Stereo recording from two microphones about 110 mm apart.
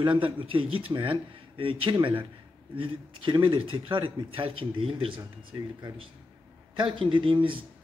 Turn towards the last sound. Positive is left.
turn(degrees=-50)  # may be behind; listen again after turning